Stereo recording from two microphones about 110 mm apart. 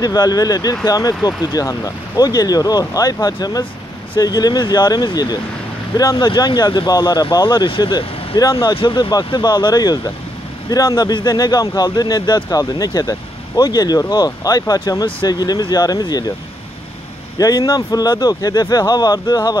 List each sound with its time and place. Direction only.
0.0 s speech: 35° left (ahead or behind)
8.4 s speech: 30° left (ahead or behind)
8.6 s speech: 45° left (ahead or behind)
17.4 s speech: 35° left (ahead or behind)